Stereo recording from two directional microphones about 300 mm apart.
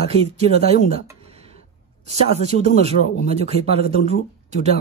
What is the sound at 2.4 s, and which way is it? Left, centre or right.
Speech, right.